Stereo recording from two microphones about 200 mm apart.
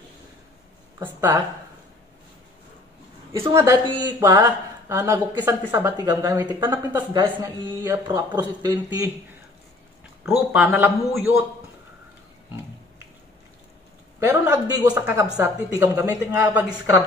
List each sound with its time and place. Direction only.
0.9 s speech: 15° right (ahead or behind)
3.5 s a man's voice: 15° right (ahead or behind)
10.2 s speech: 10° right (ahead or behind)
14.2 s a man's voice: 15° right (ahead or behind)
15.0 s speech: 10° right (ahead or behind)